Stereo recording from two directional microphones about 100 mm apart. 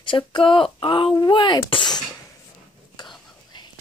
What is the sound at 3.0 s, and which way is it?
Whispering, 50° left (ahead or behind).